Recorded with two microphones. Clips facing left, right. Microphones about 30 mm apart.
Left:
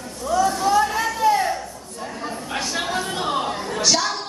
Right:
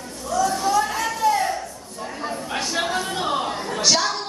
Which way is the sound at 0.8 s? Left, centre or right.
Centre.